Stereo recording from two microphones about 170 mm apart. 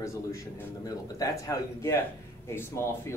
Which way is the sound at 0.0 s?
15° left (ahead or behind).